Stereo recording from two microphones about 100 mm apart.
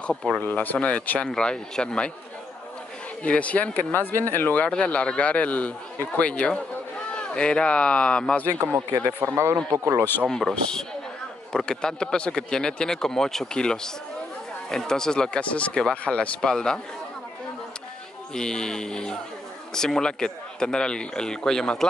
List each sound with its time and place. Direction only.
0.4 s speech: 15° left (ahead or behind)
3.3 s speech: 15° left (ahead or behind)
8.5 s speech: 25° right (ahead or behind)
10.2 s speech: centre (ahead or behind)
18.3 s speech: 5° left (ahead or behind)